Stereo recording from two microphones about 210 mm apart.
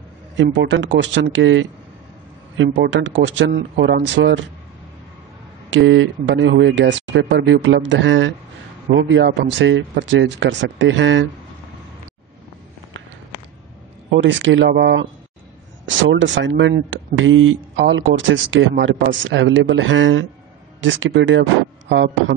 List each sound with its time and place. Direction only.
0.4 s speech: 60° right (ahead or behind)
5.7 s speech: 65° right (ahead or behind)
14.1 s speech: 60° right (ahead or behind)
15.8 s speech: 65° right (ahead or behind)